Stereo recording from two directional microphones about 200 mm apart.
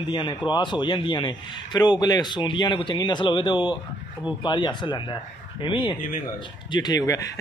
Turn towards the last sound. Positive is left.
turn(degrees=20)  # may be behind; listen again after turning